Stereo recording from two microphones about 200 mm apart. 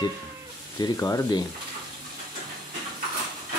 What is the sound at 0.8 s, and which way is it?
Speech, 15° left (ahead or behind).